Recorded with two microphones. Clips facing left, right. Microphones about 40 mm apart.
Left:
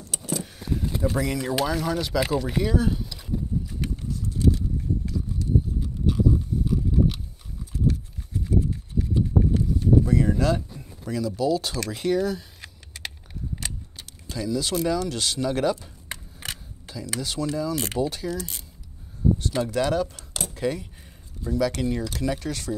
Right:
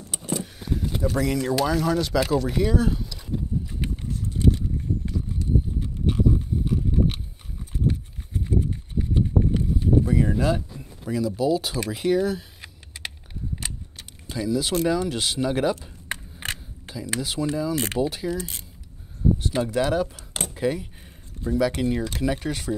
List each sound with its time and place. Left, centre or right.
0.1 s vehicle: centre
0.4 s vehicle: centre
1.1 s speech: centre
3.8 s horse: right
7.7 s horse: right
9.5 s vehicle: right
11.1 s speech: centre
14.3 s speech: centre
16.1 s a sound: right
16.9 s a sound: right
17.2 s speech: centre